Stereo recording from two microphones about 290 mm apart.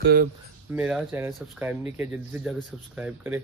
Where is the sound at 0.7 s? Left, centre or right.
Centre.